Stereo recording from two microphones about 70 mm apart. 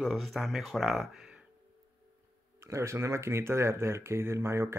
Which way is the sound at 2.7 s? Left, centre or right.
Right.